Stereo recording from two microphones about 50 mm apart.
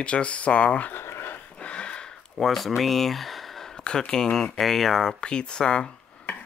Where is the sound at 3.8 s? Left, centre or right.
Centre.